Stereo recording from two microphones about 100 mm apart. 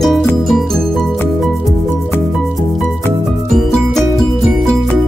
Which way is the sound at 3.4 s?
Centre (ahead or behind).